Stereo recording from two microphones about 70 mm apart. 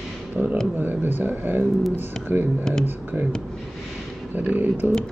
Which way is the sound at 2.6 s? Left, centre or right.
Centre.